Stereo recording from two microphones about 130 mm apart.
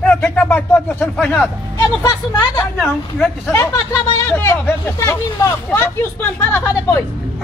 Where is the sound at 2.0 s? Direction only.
25° left (ahead or behind).